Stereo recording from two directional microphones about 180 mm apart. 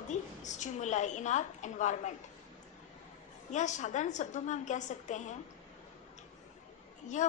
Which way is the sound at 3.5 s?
40° left (ahead or behind).